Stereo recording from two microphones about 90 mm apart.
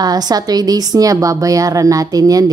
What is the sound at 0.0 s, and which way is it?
A woman's voice, 45° right (ahead or behind).